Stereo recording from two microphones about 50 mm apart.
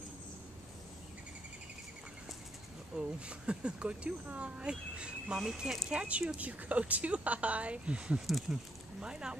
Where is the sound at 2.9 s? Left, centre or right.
Centre.